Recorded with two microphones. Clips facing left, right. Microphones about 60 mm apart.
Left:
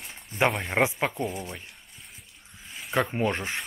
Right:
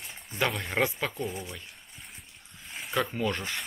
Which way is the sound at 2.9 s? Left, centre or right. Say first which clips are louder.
Left 3 dB; left.